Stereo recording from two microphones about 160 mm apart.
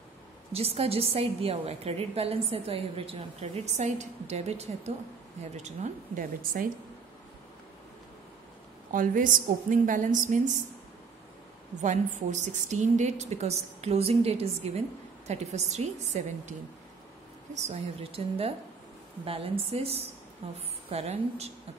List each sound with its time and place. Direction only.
0.5 s a woman's voice: 40° right (ahead or behind); by 6.7 s 60° right (ahead or behind)
8.9 s a woman's voice: 55° right (ahead or behind)
11.8 s a woman's voice: 50° right (ahead or behind)
17.6 s a woman's voice: 40° right (ahead or behind)